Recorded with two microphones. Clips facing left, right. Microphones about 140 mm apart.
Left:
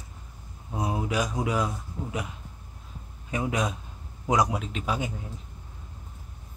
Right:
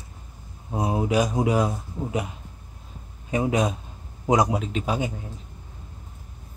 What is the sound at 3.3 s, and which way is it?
Speech, 30° right (ahead or behind).